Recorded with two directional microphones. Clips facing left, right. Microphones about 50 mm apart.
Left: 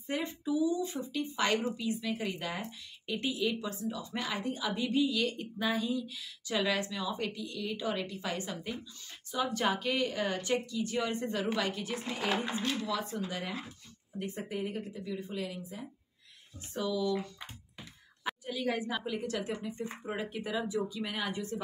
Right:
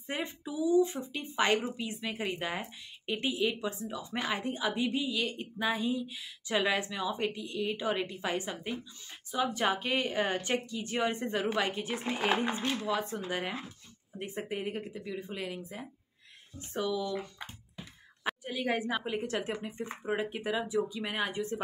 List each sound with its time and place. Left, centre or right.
0.0 s a woman's voice: right
9.8 s speech: right
18.4 s speech: right